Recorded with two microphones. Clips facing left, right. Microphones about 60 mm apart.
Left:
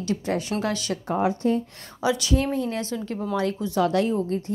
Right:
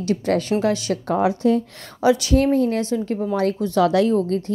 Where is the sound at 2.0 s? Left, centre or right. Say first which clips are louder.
Right 6 dB; right.